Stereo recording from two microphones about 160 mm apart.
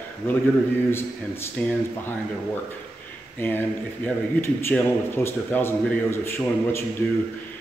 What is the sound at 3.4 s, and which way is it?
A man's voice, 10° left (ahead or behind).